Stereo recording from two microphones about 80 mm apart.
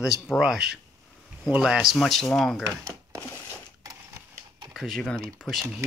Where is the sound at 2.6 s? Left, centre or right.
Right.